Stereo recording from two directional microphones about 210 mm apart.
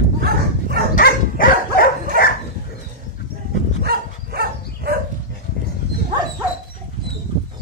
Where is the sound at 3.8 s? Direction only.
45° right (ahead or behind).